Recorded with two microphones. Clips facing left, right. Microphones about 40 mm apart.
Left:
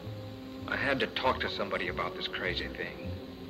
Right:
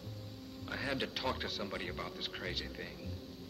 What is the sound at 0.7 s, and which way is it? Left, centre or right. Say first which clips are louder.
Speech: left 8 dB; left.